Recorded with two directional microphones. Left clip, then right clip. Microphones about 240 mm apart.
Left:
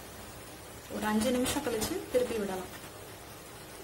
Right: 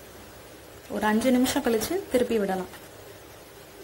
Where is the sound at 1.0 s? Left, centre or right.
Right.